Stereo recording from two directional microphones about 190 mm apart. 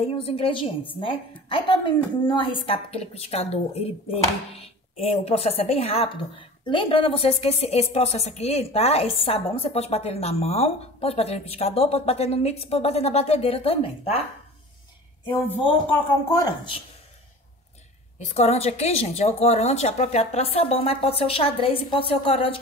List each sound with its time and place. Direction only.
0.0 s a woman's voice: 30° left (ahead or behind)
15.2 s a woman's voice: 10° left (ahead or behind)
18.2 s a woman's voice: 35° left (ahead or behind)